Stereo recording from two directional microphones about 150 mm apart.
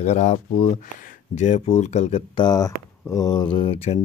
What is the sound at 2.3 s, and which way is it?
Speech, 30° left (ahead or behind).